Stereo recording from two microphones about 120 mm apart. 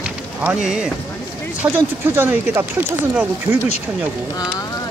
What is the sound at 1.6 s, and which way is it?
Speech, 20° right (ahead or behind).